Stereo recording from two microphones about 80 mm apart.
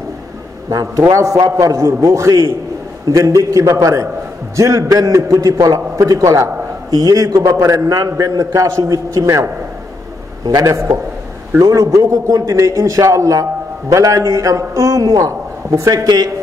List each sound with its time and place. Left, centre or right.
0.7 s a man's voice: right
10.4 s a man's voice: right
11.6 s a man's voice: right